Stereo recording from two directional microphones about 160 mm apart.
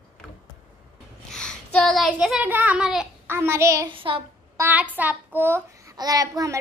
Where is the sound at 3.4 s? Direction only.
15° right (ahead or behind).